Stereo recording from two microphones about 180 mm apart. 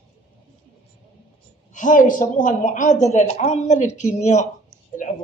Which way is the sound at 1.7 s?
45° left (ahead or behind).